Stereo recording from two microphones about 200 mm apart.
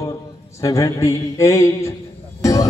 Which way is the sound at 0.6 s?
15° left (ahead or behind).